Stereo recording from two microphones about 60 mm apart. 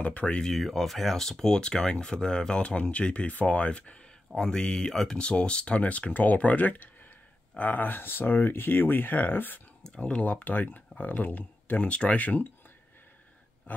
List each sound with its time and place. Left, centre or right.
0.0 s speech: left
0.5 s speech: centre; by 9.6 s left
9.8 s speech: centre